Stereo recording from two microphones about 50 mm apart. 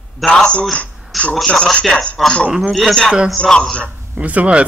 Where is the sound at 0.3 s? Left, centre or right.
Centre.